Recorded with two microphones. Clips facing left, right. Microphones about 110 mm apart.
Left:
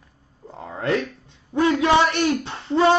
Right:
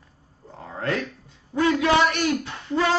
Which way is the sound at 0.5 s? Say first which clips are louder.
Left 4 dB; 20° left (ahead or behind).